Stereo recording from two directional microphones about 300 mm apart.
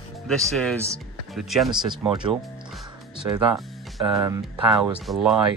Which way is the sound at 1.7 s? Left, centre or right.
Centre.